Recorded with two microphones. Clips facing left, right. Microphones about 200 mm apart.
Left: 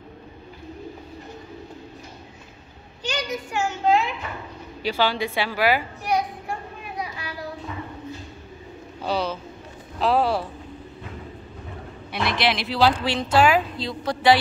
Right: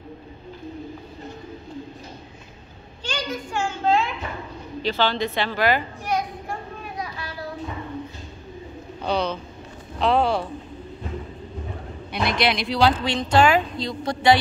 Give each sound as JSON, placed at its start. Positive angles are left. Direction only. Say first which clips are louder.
{"t": 3.1, "sound": "a child's voice", "louder": "left 1 dB", "side_deg": 20}
{"t": 9.0, "sound": "speech", "louder": "right 1 dB", "side_deg": 5}
{"t": 12.1, "sound": "speech", "louder": "right 1 dB", "side_deg": 0}